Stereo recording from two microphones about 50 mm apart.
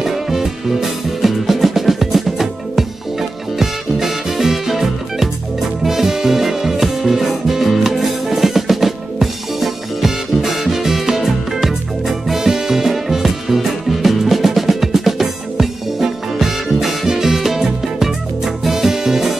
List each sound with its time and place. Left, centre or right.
0.0 s music: centre